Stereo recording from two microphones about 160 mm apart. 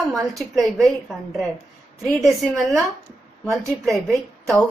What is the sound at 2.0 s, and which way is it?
Speech, centre (ahead or behind).